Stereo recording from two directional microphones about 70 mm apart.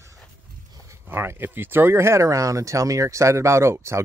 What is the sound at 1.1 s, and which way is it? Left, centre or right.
Speech, right.